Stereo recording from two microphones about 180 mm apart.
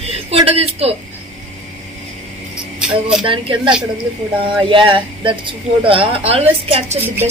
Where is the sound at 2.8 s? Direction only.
5° right (ahead or behind).